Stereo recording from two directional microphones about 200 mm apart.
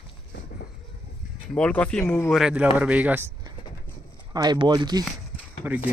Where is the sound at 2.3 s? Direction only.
5° right (ahead or behind); by 5.1 s 20° right (ahead or behind).